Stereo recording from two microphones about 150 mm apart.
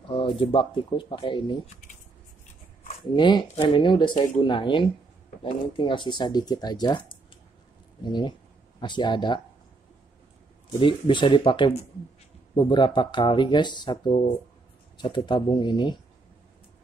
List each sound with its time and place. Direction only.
0.4 s speech: 35° left (ahead or behind)
3.2 s speech: 30° left (ahead or behind)
10.8 s speech: 35° left (ahead or behind)